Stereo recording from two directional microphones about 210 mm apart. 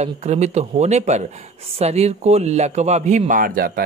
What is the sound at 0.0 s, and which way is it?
Speech, 30° right (ahead or behind).